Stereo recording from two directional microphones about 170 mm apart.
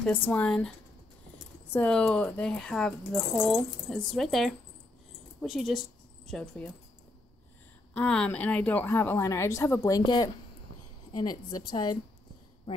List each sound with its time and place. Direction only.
0.0 s speech: 10° left (ahead or behind)
7.9 s a woman's voice: 5° left (ahead or behind); by 11.9 s 25° left (ahead or behind)